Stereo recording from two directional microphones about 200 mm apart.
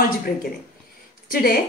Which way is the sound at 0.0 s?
45° left (ahead or behind).